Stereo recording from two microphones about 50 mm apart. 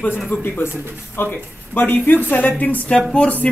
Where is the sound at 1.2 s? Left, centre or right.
Left.